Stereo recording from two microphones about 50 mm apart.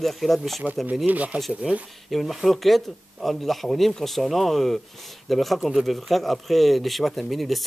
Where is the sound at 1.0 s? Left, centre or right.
Right.